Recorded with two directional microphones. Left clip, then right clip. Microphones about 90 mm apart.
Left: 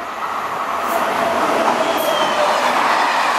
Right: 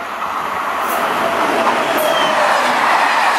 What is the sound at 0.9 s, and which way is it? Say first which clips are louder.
Train: even; 20° right (ahead or behind).